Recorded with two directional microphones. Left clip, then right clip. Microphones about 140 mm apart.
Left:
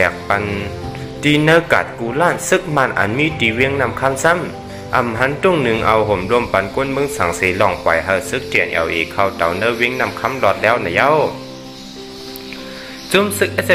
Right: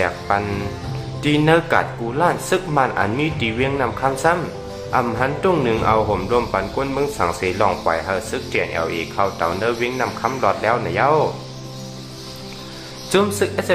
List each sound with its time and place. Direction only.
0.0 s speech: 15° left (ahead or behind)
13.1 s speech: 5° left (ahead or behind)